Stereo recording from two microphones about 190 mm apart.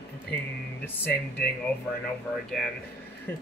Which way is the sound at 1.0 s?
10° left (ahead or behind).